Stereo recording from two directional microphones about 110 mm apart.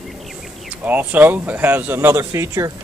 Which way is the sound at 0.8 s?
15° right (ahead or behind).